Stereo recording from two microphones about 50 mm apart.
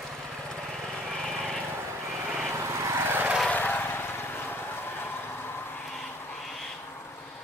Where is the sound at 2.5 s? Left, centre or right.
Right.